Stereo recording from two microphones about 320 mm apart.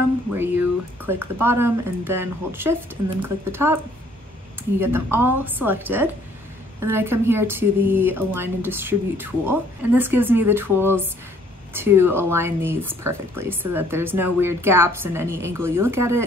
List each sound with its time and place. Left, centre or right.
0.4 s a woman's voice: centre